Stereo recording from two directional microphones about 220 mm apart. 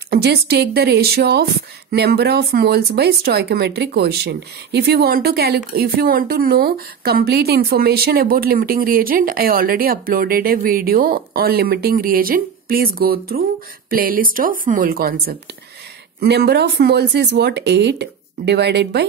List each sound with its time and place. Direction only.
0.1 s a woman's voice: 45° right (ahead or behind)